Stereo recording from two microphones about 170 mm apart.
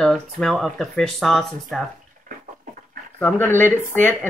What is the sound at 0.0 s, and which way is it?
Speech, 5° left (ahead or behind).